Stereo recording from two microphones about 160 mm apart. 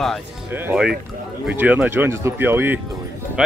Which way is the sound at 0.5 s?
10° right (ahead or behind).